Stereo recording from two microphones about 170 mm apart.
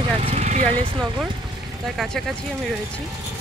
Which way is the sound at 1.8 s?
Centre (ahead or behind).